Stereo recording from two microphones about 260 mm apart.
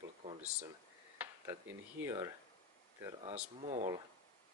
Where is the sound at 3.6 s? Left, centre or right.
Right.